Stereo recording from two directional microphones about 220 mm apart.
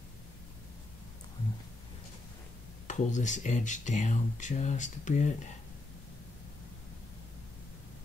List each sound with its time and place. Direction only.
2.9 s speech: 35° left (ahead or behind)